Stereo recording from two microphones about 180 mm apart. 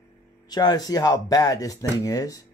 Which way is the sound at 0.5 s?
20° left (ahead or behind).